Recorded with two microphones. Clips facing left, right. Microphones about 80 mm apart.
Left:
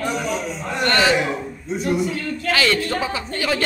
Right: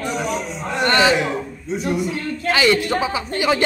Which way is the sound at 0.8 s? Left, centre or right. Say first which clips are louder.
Right 2 dB; centre.